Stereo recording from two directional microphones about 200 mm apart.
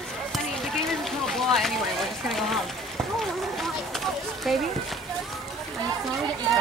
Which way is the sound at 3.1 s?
Centre (ahead or behind).